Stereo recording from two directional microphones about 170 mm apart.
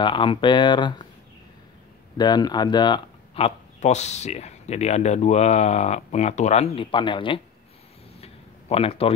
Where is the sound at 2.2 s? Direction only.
25° left (ahead or behind).